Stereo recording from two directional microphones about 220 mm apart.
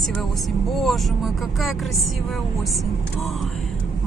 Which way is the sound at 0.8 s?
Centre (ahead or behind).